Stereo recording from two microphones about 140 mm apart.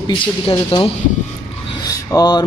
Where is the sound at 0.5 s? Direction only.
40° left (ahead or behind).